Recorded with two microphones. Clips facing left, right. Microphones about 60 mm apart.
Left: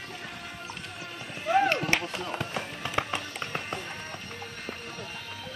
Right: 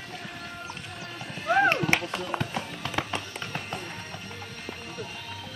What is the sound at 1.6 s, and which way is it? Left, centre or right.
Speech, right.